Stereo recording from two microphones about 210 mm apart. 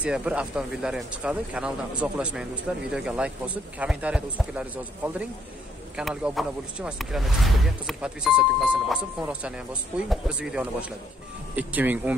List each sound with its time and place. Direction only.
0.0 s speech: 5° right (ahead or behind)